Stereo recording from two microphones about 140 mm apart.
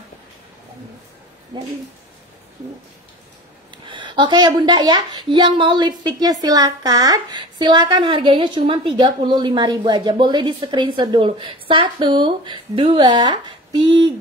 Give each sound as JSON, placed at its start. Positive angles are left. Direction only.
{"t": 1.5, "sound": "a woman's voice", "side_deg": -35}
{"t": 3.7, "sound": "a woman's voice", "side_deg": -35}